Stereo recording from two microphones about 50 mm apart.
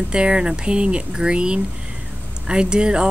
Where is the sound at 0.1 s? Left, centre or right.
Centre.